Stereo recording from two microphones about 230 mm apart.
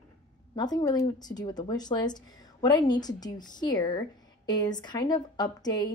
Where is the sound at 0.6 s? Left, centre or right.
Centre.